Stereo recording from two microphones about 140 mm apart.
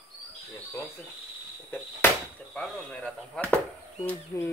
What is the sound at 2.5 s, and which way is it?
Chop, 5° left (ahead or behind).